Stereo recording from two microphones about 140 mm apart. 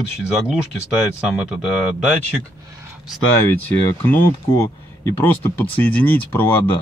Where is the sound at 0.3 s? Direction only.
5° right (ahead or behind).